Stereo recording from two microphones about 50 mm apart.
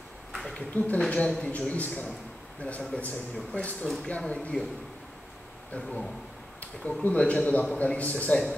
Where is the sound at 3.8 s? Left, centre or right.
Centre.